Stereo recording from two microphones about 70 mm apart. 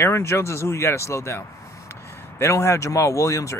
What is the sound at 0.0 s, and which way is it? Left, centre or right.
Speech, left.